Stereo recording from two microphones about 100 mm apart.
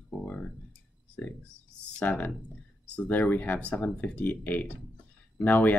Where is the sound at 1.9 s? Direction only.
15° left (ahead or behind).